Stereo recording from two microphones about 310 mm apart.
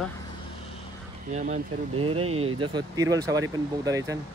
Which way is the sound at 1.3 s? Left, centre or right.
Right.